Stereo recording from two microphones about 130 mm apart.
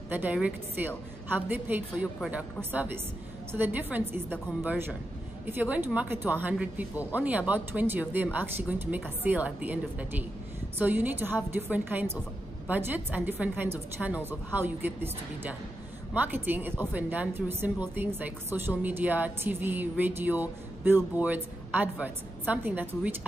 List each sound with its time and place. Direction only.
0.1 s a woman's voice: 10° right (ahead or behind)